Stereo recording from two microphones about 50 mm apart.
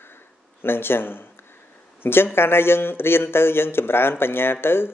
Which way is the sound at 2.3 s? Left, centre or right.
Left.